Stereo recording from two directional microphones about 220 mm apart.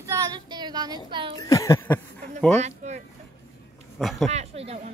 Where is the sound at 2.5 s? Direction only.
30° right (ahead or behind).